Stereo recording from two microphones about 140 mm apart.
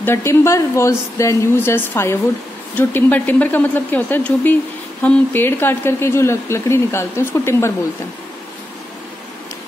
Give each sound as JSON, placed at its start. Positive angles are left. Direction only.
{"t": 0.0, "sound": "speech", "side_deg": 20}